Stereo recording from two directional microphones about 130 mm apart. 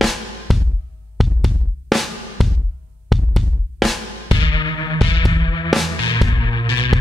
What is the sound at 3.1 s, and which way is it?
Drum, centre (ahead or behind).